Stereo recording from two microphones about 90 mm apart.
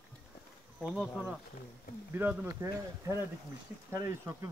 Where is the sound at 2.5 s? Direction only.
35° right (ahead or behind).